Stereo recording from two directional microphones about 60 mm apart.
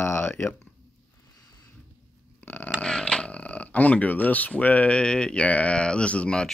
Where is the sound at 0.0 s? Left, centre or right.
Left.